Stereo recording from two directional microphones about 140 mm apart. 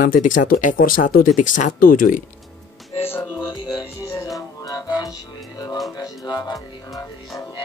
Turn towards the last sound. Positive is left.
turn(degrees=25)  # may be behind; listen again after turning